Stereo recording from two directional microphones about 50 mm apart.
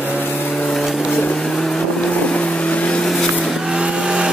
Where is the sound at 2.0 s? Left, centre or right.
Left.